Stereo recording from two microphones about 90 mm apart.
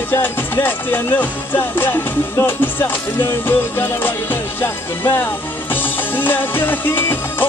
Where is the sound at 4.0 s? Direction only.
25° left (ahead or behind).